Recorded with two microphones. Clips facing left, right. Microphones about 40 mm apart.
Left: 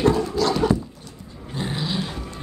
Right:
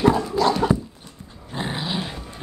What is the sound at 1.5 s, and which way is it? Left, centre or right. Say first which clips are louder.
Dog: even; right.